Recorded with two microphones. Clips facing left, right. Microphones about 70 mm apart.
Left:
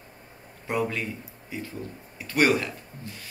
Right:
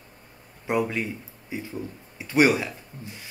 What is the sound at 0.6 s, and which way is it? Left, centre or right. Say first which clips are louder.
Speech: right 2 dB; centre.